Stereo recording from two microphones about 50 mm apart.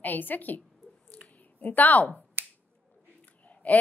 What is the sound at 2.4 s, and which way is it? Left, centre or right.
Finger snapping, right.